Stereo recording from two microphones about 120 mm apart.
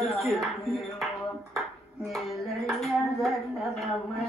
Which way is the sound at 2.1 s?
Centre (ahead or behind).